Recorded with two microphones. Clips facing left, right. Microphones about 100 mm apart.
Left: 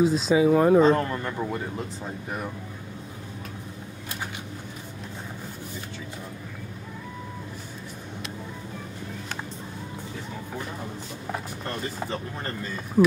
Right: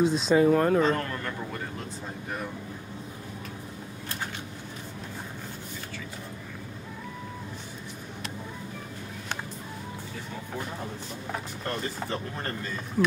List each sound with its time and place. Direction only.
0.0 s speech: centre (ahead or behind)
0.7 s speech: 20° left (ahead or behind)
11.3 s speech: centre (ahead or behind)